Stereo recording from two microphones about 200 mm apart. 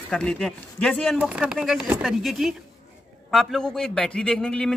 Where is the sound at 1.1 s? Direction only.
5° right (ahead or behind).